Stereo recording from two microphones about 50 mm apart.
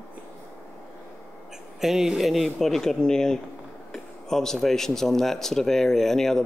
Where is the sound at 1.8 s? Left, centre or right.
Centre.